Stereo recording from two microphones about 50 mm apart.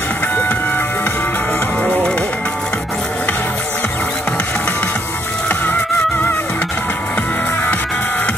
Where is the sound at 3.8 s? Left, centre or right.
Centre.